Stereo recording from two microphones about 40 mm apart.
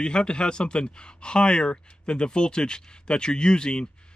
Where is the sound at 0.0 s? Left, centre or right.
Left.